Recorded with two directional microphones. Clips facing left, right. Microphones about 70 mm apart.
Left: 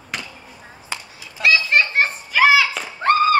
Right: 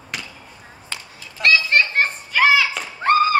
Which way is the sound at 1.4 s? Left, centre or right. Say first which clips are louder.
Even; centre.